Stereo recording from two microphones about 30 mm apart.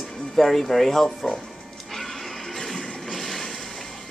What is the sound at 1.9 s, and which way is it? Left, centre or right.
Music, centre.